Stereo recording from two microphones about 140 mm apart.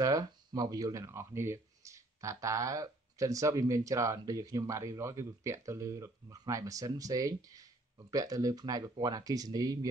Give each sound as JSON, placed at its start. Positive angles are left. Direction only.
{"t": 0.0, "sound": "speech", "side_deg": -25}